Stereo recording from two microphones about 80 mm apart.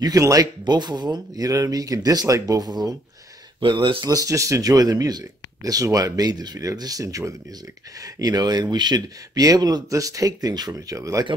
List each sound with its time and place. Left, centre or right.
0.0 s speech: right
3.6 s speech: right
4.0 s speech: right
10.7 s speech: right